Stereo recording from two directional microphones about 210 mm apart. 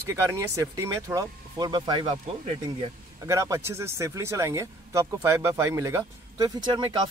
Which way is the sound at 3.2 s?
15° right (ahead or behind).